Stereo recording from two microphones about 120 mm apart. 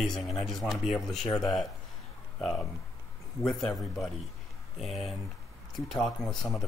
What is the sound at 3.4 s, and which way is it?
Speech, 5° left (ahead or behind).